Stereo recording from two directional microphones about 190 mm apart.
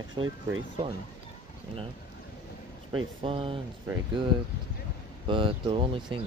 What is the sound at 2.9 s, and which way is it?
Speech, 25° right (ahead or behind).